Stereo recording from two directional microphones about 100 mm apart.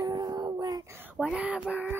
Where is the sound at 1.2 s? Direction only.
10° right (ahead or behind).